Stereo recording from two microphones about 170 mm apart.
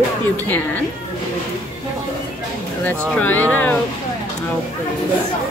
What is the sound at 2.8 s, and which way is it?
Speech, 10° left (ahead or behind).